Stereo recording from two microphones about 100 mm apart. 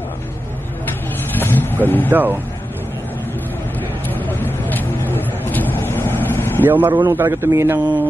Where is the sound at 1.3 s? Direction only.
20° left (ahead or behind).